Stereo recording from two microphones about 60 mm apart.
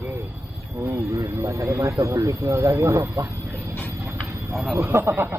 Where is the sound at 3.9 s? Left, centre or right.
Right.